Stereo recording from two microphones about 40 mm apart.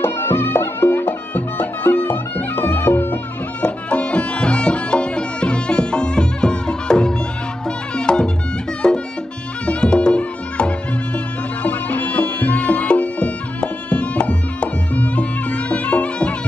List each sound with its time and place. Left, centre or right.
0.0 s music: left
0.5 s music: left
1.3 s music: left
3.6 s music: left